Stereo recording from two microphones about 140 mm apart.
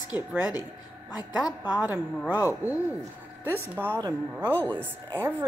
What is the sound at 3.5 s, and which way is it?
Speech, 15° right (ahead or behind).